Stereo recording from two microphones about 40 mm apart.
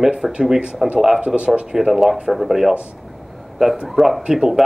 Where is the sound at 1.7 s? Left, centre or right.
Centre.